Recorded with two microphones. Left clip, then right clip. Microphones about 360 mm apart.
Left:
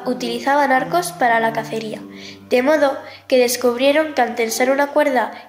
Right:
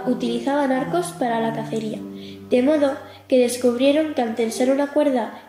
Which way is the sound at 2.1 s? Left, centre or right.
Centre.